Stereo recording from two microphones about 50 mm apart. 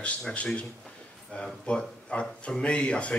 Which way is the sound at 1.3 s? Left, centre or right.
Centre.